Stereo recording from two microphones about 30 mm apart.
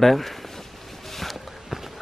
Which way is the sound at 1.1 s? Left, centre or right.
Centre.